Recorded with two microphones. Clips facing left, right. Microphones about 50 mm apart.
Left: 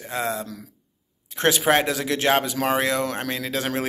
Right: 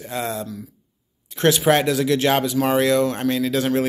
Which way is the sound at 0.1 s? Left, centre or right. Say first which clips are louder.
Even; left.